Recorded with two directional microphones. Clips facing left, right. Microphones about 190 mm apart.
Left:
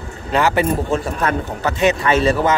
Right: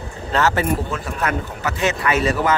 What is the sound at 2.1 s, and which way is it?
Speech, 30° left (ahead or behind).